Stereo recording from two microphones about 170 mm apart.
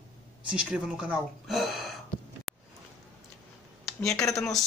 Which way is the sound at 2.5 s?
Centre (ahead or behind).